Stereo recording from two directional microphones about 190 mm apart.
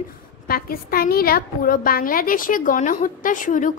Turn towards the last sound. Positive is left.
turn(degrees=45)  # may be behind; listen again after turning